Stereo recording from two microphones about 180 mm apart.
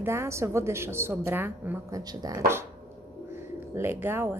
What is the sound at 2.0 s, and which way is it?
Speech, 20° right (ahead or behind).